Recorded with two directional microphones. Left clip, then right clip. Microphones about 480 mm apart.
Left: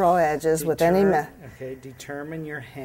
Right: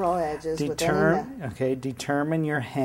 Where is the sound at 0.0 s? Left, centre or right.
Left.